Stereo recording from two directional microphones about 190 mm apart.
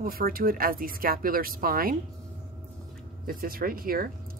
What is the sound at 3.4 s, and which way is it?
Speech, 50° right (ahead or behind).